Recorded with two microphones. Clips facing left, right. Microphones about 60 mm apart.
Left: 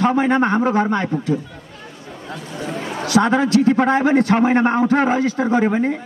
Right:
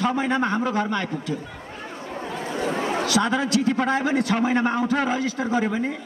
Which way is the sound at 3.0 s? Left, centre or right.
Left.